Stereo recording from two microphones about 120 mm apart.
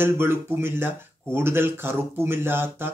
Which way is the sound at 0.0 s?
20° right (ahead or behind).